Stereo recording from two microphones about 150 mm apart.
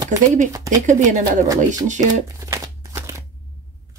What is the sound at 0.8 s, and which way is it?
Speech, 60° right (ahead or behind).